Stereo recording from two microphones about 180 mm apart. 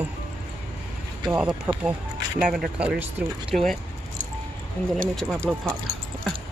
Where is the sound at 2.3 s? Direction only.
5° right (ahead or behind).